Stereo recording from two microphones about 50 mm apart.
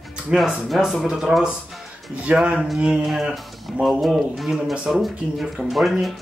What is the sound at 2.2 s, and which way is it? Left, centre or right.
Speech, right.